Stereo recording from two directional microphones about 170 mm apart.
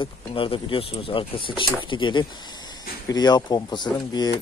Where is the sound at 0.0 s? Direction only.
30° left (ahead or behind).